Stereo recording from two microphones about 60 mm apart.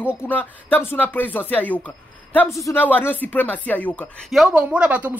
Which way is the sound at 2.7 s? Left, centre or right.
Left.